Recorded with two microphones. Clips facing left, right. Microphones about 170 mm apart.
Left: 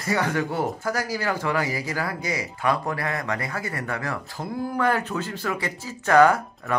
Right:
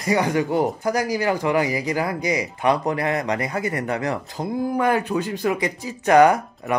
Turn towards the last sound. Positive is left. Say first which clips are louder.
# right 3 dB
turn(degrees=-20)  # may be behind; listen again after turning